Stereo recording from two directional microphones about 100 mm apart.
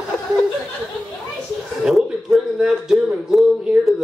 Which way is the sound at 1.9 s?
5° right (ahead or behind).